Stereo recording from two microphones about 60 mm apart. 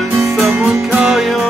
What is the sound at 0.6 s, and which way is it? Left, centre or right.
Music, centre.